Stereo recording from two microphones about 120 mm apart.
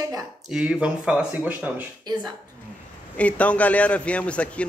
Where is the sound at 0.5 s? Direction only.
10° right (ahead or behind).